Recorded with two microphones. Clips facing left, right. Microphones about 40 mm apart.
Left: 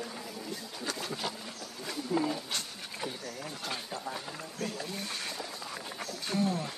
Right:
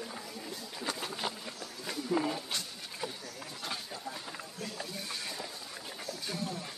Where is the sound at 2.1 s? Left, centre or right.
Centre.